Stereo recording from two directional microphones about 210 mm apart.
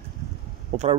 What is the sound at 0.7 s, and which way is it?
Speech, 30° right (ahead or behind).